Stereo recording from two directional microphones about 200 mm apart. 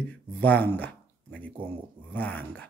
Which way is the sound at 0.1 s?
10° left (ahead or behind).